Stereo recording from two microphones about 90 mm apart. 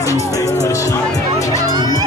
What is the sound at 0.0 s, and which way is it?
Music, 40° left (ahead or behind).